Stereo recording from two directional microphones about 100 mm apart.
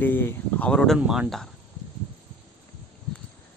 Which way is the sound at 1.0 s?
5° right (ahead or behind).